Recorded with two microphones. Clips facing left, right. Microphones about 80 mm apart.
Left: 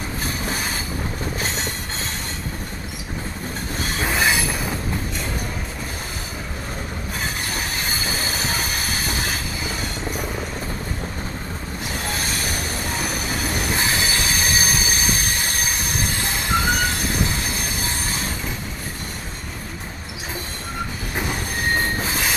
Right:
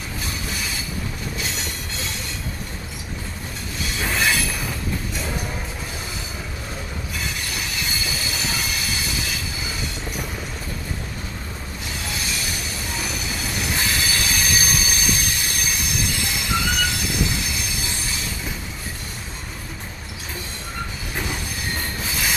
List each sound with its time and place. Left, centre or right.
0.2 s train: left
1.4 s rail transport: left
4.1 s train wheels squealing: left
7.2 s train: left
12.1 s train: left
13.7 s train: left
21.3 s train: left